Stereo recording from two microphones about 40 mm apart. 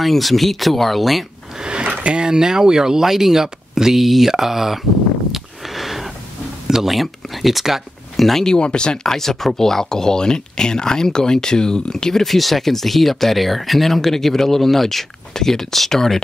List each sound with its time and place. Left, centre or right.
0.0 s speech: centre
1.6 s a sound: right
1.9 s speech: right; by 4.7 s centre
5.3 s a sound: centre
6.7 s speech: centre
8.3 s speech: centre
8.5 s speech: left
9.0 s speech: centre